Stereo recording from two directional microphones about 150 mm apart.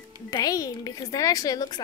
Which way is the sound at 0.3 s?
25° left (ahead or behind).